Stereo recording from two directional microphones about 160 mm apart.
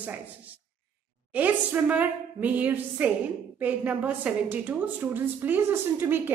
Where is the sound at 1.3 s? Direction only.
10° right (ahead or behind).